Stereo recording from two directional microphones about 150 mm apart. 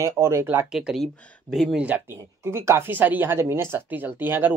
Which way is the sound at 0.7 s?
Centre (ahead or behind).